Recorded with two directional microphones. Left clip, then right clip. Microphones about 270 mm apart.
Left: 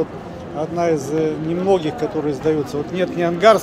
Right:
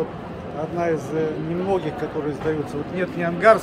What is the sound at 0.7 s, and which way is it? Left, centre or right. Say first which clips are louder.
A man's voice: left 4 dB; left.